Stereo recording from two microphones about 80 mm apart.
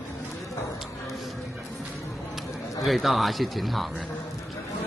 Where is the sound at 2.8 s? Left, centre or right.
Centre.